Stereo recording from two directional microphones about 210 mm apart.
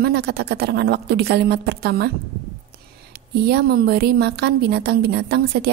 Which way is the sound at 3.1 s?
50° right (ahead or behind).